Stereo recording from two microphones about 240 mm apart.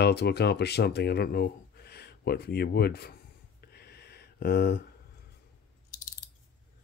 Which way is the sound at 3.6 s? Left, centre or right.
Left.